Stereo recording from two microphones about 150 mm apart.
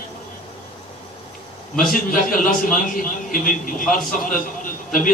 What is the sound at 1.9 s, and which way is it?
A man's voice, 65° left (ahead or behind).